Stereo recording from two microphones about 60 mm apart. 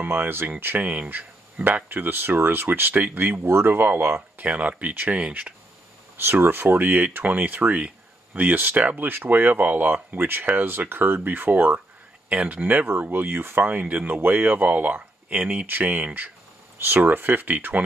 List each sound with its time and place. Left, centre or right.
0.0 s speech: right
6.1 s speech: right
12.3 s speech: right